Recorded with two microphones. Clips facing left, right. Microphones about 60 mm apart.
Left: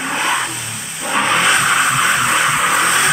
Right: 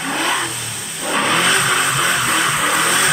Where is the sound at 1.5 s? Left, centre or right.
Centre.